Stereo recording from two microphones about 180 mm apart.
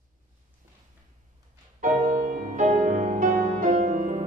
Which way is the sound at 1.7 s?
45° right (ahead or behind).